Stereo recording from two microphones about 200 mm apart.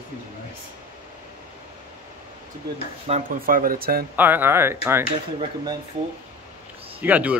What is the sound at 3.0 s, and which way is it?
Speech, 35° right (ahead or behind).